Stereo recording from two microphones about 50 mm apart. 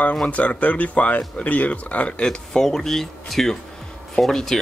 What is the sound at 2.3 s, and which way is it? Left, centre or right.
Speech, centre.